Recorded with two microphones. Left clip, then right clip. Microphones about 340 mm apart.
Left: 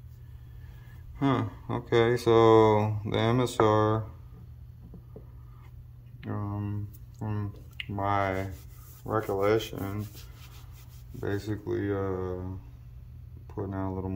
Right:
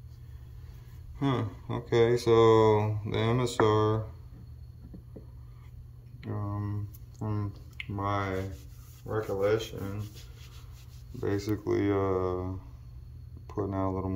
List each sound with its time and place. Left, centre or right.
1.1 s speech: centre
6.2 s a sound: centre
7.2 s speech: centre
9.0 s speech: centre
11.1 s speech: centre
13.5 s speech: centre